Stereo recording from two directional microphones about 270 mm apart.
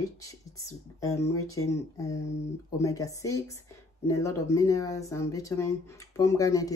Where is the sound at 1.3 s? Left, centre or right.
Left.